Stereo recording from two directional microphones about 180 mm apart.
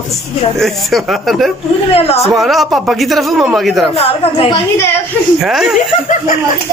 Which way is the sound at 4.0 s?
30° left (ahead or behind).